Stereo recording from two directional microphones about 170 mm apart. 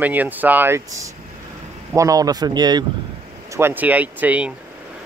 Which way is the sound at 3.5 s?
15° right (ahead or behind).